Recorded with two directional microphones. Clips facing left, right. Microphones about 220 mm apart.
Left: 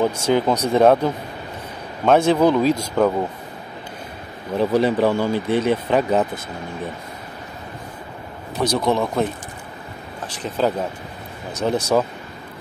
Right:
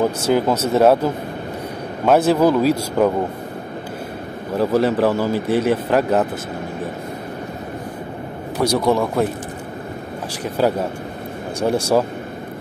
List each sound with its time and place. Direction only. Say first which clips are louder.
0.0 s speech: right 1 dB; 5° right (ahead or behind)
4.6 s speech: right 1 dB; 5° right (ahead or behind)
8.5 s speech: right 2 dB; 10° right (ahead or behind)
10.3 s speech: right 2 dB; 10° right (ahead or behind)